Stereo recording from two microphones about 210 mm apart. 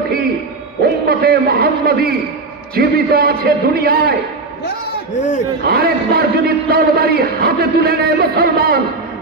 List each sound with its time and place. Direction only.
1.0 s a man's voice: 45° right (ahead or behind)
5.7 s a man's voice: 50° right (ahead or behind)